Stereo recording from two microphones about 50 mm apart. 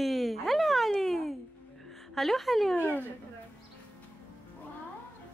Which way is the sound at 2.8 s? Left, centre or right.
Left.